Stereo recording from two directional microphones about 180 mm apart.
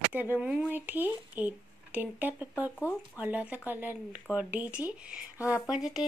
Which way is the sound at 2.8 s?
15° left (ahead or behind).